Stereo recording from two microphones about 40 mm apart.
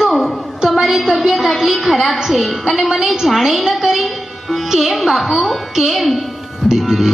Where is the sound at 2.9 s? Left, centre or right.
Centre.